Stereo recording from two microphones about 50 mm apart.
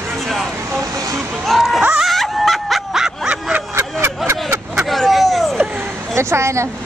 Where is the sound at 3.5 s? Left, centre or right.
Right.